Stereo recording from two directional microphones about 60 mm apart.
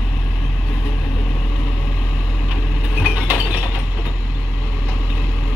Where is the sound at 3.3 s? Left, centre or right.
Right.